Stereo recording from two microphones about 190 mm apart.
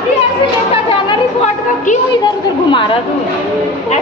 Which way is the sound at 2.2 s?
25° left (ahead or behind).